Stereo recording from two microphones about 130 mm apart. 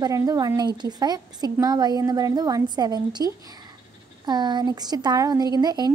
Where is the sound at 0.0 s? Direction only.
25° right (ahead or behind).